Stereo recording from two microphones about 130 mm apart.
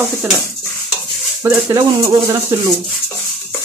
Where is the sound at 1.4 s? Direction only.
25° right (ahead or behind).